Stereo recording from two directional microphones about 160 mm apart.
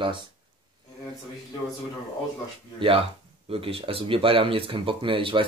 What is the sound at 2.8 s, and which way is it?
Speech, 35° right (ahead or behind).